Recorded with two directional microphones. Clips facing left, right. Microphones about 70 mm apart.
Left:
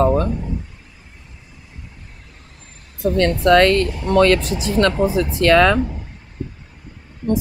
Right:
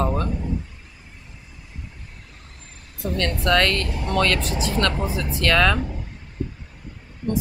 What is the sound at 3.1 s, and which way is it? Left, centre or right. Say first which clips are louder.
Speech: left 7 dB; left.